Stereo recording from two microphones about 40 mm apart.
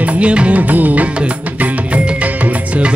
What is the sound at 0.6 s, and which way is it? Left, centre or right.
Music, right.